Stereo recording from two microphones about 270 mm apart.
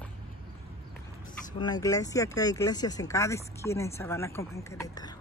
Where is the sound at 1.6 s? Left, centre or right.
Centre.